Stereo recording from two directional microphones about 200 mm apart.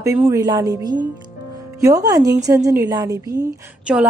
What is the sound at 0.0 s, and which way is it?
A woman's voice, 15° right (ahead or behind).